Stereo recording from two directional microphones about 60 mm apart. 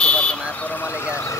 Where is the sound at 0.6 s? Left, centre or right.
Left.